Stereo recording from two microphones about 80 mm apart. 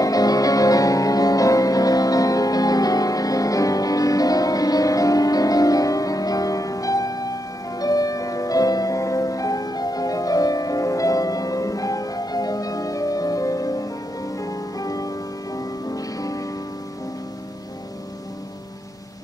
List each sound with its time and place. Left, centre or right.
0.0 s music: left